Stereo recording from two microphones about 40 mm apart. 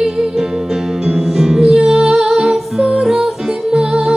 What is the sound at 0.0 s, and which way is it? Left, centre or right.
Music, centre.